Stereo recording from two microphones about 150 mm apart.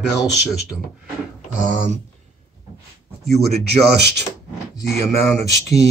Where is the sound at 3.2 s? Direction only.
45° right (ahead or behind).